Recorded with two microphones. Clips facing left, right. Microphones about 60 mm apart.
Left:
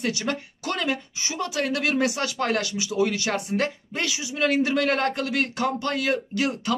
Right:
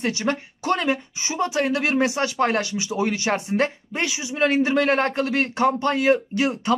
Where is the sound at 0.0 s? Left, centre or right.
Right.